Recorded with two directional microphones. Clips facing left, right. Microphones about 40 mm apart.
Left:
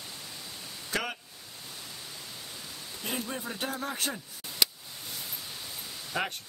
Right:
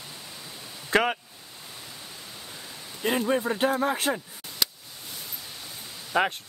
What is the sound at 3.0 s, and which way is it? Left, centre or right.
Speech, right.